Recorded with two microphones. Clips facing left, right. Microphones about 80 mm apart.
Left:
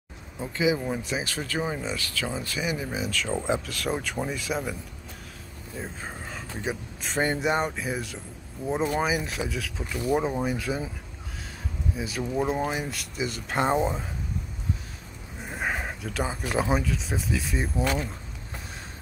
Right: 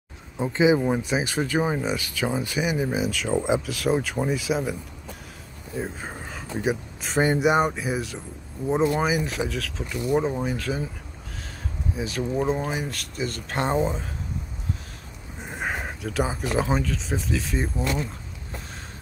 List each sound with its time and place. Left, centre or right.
0.4 s speech: right
3.1 s speech: centre
5.8 s speech: centre
12.0 s speech: centre
15.4 s speech: centre